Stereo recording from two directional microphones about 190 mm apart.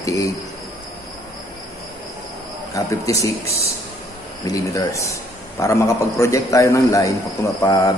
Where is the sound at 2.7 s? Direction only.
15° left (ahead or behind).